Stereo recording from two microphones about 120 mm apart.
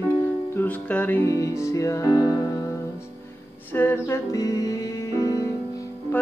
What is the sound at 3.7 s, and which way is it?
Music, 15° left (ahead or behind).